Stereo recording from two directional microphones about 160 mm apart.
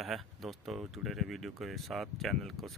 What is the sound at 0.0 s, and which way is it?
Speech, centre (ahead or behind).